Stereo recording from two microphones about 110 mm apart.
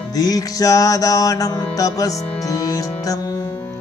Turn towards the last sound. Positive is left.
turn(degrees=35)  # may be behind; listen again after turning